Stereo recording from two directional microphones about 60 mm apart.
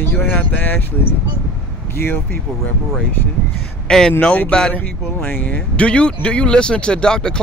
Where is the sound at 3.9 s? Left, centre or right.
Centre.